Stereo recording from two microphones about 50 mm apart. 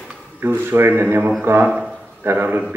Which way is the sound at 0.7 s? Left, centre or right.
Right.